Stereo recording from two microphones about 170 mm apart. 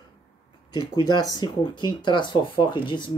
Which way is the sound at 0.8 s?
25° left (ahead or behind).